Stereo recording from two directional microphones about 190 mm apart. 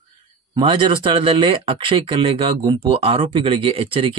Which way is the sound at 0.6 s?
25° right (ahead or behind).